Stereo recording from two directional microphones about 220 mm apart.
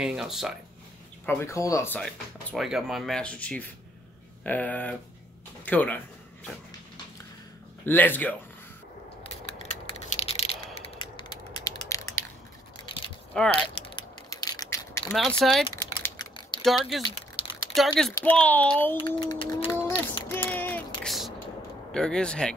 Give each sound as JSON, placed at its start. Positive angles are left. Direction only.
{"t": 0.0, "sound": "speech", "side_deg": 0}
{"t": 1.2, "sound": "speech", "side_deg": 10}
{"t": 7.8, "sound": "speech", "side_deg": 10}
{"t": 10.0, "sound": "a sound", "side_deg": 30}
{"t": 13.4, "sound": "speech", "side_deg": 5}
{"t": 13.7, "sound": "a sound", "side_deg": 20}
{"t": 15.1, "sound": "speech", "side_deg": 0}
{"t": 15.7, "sound": "typing", "side_deg": 15}
{"t": 16.6, "sound": "speech", "side_deg": 0}
{"t": 18.9, "sound": "a sound", "side_deg": 20}
{"t": 21.9, "sound": "speech", "side_deg": 5}